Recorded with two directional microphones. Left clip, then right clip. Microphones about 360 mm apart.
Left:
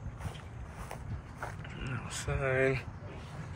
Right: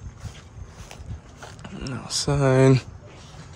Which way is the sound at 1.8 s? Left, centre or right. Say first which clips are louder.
Right 12 dB; centre.